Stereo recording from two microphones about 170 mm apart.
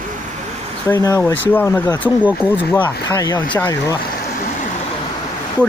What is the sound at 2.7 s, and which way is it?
Speech, 15° left (ahead or behind).